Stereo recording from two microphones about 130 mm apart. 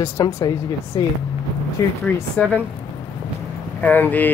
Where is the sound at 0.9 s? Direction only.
35° left (ahead or behind).